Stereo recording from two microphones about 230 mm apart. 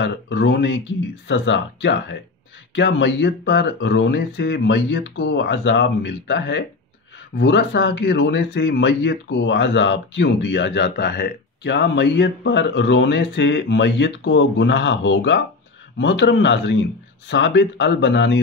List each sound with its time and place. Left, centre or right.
0.0 s speech: left